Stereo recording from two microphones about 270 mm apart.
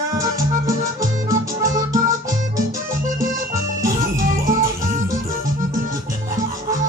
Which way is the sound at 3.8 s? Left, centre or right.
Centre.